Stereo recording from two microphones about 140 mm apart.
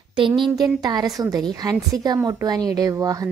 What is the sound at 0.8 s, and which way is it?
A woman's voice, 25° right (ahead or behind).